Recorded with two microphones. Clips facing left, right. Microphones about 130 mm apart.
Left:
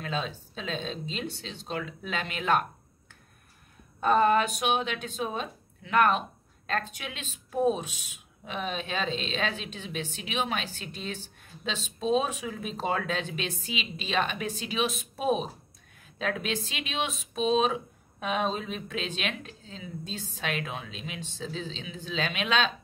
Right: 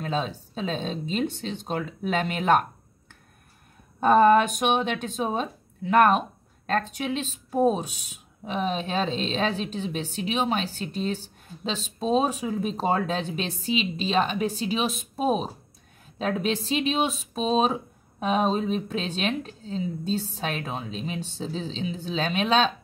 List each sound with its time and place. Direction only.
0.0 s speech: 40° right (ahead or behind)
4.0 s speech: 45° right (ahead or behind)